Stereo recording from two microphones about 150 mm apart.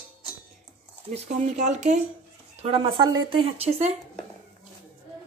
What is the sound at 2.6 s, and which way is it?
Speech, 35° right (ahead or behind).